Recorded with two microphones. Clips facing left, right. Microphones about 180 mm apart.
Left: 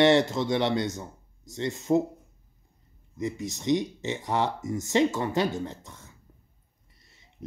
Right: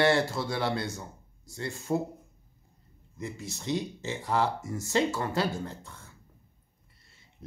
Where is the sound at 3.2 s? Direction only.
20° left (ahead or behind).